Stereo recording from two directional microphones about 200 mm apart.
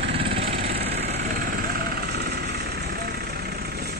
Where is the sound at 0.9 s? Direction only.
55° right (ahead or behind).